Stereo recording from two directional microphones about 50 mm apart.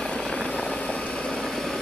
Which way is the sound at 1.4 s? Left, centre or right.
Centre.